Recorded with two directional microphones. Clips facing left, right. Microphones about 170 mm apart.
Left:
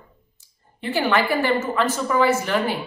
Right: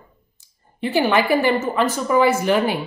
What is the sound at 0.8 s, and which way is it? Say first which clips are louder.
Speech: right 3 dB; 15° right (ahead or behind).